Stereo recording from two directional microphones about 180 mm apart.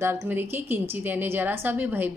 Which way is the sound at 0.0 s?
15° right (ahead or behind).